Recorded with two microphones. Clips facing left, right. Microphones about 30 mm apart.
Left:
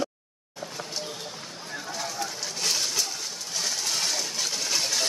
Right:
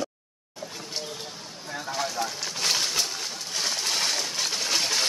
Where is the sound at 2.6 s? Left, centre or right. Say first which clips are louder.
Right 2 dB; right.